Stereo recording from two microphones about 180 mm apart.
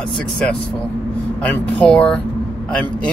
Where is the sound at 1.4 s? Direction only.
5° left (ahead or behind).